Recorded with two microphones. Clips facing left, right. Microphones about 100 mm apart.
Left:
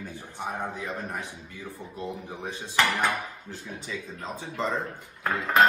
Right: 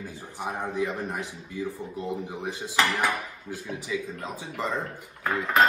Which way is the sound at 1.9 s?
15° right (ahead or behind).